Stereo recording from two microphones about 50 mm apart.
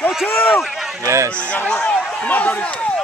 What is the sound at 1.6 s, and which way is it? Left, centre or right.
Speech, left.